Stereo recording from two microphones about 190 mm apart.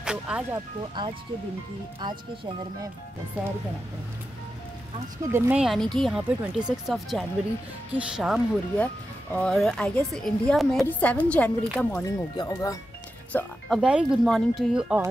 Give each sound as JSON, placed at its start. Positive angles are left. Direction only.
{"t": 0.0, "sound": "a woman's voice", "side_deg": -5}
{"t": 0.7, "sound": "speech", "side_deg": -25}
{"t": 5.3, "sound": "a woman's voice", "side_deg": -10}
{"t": 12.0, "sound": "speech", "side_deg": 20}
{"t": 13.3, "sound": "a woman's voice", "side_deg": 5}